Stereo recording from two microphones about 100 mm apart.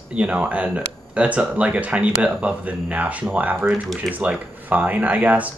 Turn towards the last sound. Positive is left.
turn(degrees=-15)  # may be behind; listen again after turning